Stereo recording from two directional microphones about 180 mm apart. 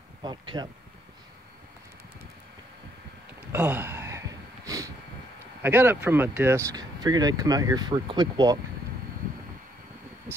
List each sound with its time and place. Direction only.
0.2 s speech: 25° right (ahead or behind)
3.5 s a sound: 10° right (ahead or behind)
5.6 s speech: 10° right (ahead or behind)